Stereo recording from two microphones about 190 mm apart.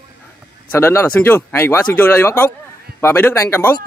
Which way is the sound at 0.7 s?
15° left (ahead or behind).